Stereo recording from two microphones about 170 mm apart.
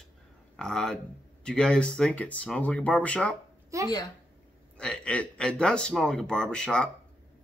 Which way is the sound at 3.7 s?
20° right (ahead or behind).